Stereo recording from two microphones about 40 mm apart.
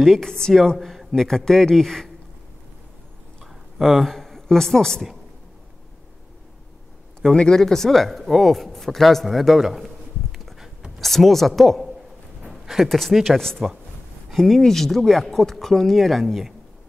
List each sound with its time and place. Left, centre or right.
0.0 s speech: centre
0.7 s a man's voice: centre
1.1 s speech: centre
3.7 s speech: centre
7.3 s speech: centre
10.3 s a sound: centre
11.0 s speech: centre
13.6 s speech: centre
14.3 s speech: centre